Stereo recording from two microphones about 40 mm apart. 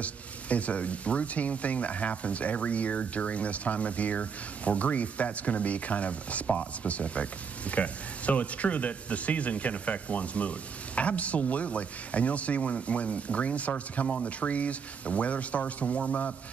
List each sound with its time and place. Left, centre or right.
0.0 s speech: left